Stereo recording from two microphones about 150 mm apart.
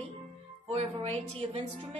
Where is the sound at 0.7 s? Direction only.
45° right (ahead or behind).